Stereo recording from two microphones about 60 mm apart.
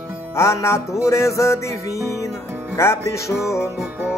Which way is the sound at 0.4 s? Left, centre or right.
Left.